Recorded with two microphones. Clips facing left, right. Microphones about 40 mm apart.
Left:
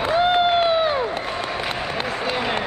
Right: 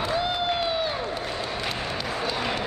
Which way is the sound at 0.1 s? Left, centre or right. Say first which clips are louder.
Left 11 dB; left.